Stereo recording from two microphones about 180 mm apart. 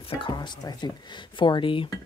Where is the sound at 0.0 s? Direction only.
30° left (ahead or behind).